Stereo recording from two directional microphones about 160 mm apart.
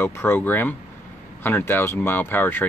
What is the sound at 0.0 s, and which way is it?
Speech, 15° left (ahead or behind).